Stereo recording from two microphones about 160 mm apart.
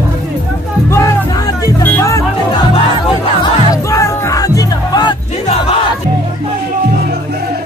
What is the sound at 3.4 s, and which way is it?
Music, 20° left (ahead or behind).